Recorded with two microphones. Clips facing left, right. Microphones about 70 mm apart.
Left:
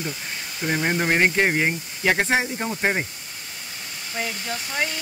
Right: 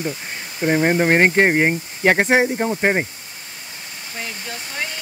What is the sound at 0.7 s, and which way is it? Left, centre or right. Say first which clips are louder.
Speech: right 6 dB; right.